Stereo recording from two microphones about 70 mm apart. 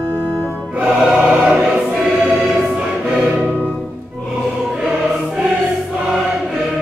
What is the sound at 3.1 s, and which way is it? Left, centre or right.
Music, centre.